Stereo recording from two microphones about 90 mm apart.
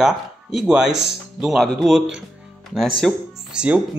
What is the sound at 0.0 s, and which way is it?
Speech, 5° right (ahead or behind).